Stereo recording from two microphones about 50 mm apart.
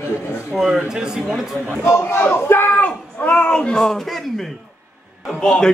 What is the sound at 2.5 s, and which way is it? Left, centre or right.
Speech, left.